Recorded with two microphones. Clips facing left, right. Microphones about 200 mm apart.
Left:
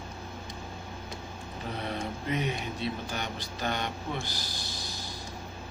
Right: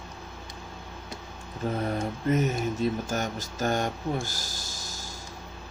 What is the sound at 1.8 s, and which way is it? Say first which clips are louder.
Speech: right 5 dB; 45° right (ahead or behind).